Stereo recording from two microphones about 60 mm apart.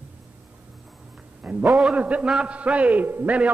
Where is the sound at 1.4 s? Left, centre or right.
Centre.